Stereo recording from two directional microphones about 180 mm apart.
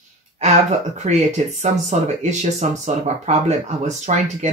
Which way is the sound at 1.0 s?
40° right (ahead or behind).